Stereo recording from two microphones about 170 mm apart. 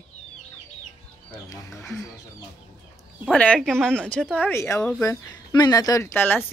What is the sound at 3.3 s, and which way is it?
Speech, 5° left (ahead or behind).